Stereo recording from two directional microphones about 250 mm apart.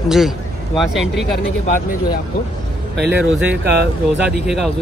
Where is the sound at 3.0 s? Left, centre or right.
Centre.